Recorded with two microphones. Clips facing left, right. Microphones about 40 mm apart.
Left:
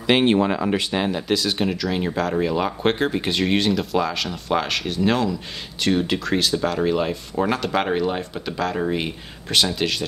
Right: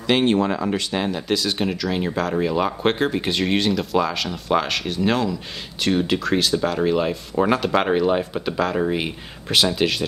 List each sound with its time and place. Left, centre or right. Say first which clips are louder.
0.0 s speech: left 1 dB; centre